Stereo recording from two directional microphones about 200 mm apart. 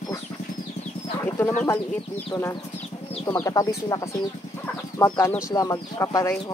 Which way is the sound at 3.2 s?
15° left (ahead or behind).